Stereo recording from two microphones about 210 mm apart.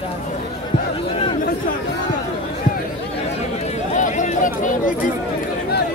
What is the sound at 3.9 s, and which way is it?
Chatter, 35° left (ahead or behind).